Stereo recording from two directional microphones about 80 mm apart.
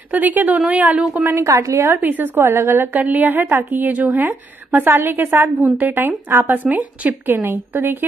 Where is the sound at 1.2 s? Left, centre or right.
Right.